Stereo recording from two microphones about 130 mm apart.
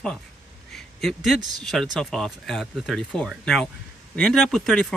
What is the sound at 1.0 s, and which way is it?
Speech, centre (ahead or behind).